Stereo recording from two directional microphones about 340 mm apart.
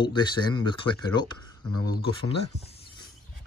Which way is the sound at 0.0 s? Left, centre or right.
Centre.